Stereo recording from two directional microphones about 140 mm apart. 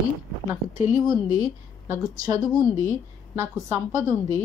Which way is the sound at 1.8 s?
20° right (ahead or behind).